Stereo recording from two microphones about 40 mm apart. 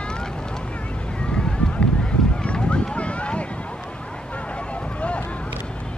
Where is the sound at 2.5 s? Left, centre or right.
Left.